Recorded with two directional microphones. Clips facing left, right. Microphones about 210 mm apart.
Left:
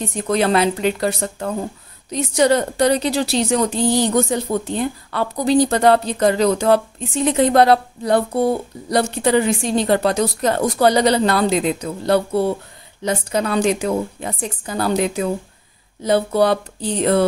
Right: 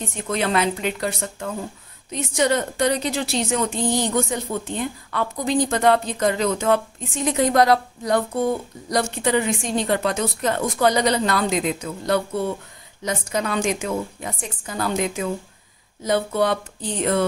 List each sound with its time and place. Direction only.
0.0 s a woman's voice: 40° left (ahead or behind)